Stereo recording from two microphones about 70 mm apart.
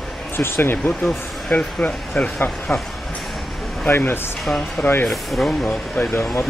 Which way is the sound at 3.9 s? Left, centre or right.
Left.